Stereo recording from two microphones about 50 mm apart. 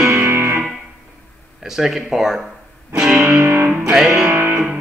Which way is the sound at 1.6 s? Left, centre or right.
Centre.